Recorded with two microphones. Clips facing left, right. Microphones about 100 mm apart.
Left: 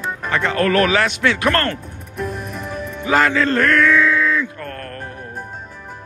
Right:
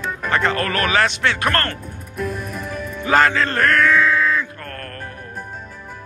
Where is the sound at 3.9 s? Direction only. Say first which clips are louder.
Left 1 dB; 40° right (ahead or behind).